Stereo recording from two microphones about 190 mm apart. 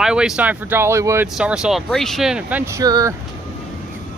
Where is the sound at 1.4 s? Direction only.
5° right (ahead or behind).